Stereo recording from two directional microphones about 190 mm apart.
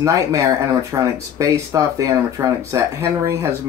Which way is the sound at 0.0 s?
15° right (ahead or behind).